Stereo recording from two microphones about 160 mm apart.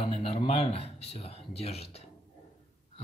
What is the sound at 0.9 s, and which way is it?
Speech, 40° left (ahead or behind).